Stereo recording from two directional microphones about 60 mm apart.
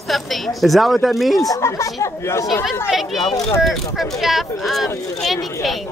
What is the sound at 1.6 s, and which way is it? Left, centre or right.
Speech, left.